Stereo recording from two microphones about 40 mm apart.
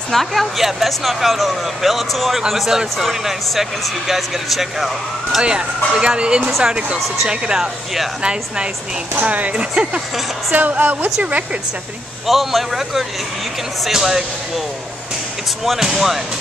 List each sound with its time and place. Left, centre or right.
0.1 s speech: centre
5.4 s speech: right
10.5 s a woman's voice: right
12.3 s speech: centre
15.6 s speech: centre